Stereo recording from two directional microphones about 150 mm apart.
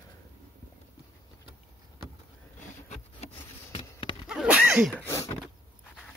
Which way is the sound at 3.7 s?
35° left (ahead or behind).